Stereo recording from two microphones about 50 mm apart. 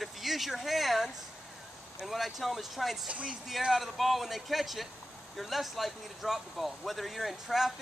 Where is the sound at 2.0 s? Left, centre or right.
Centre.